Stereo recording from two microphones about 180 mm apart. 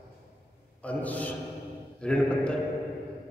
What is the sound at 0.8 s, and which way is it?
A man's voice, 10° left (ahead or behind).